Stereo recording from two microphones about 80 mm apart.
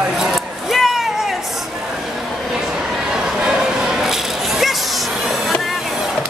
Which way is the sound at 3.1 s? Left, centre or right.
Centre.